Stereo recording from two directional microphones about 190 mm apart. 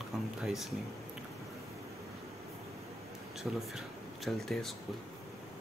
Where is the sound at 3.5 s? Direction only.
Centre (ahead or behind).